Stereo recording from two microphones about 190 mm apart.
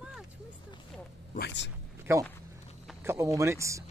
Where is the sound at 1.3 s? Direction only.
60° left (ahead or behind).